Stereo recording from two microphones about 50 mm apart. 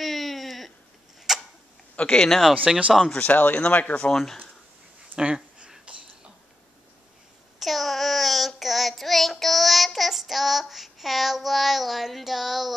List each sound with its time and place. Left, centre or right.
0.0 s a sound: centre
2.0 s speech: centre
2.7 s speech: centre
3.2 s speech: left
5.1 s a sound: centre
7.6 s child singing: centre